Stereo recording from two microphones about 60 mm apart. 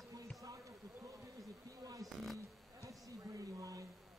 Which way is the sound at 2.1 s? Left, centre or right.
Centre.